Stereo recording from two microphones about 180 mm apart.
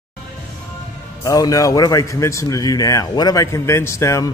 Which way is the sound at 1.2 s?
20° left (ahead or behind).